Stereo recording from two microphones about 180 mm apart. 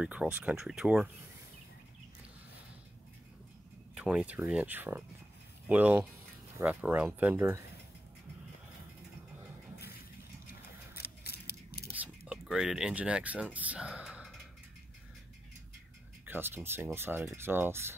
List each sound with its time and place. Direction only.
0.0 s speech: 5° right (ahead or behind)
3.9 s speech: 5° right (ahead or behind)
11.0 s scissors: 65° left (ahead or behind)
11.9 s speech: 5° right (ahead or behind)
16.3 s speech: 10° right (ahead or behind)